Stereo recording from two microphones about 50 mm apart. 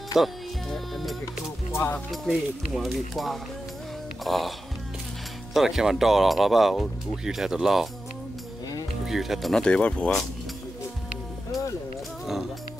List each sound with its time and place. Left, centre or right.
0.2 s speech: centre
0.7 s speech: centre
9.0 s speech: centre
9.5 s speech: centre